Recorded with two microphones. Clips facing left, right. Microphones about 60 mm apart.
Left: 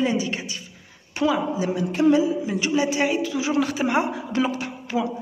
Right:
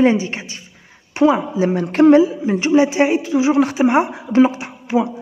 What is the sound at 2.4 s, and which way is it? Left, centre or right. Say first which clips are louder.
Speech: right 8 dB; right.